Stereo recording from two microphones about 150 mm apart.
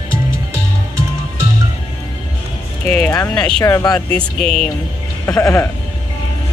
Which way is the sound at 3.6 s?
25° left (ahead or behind).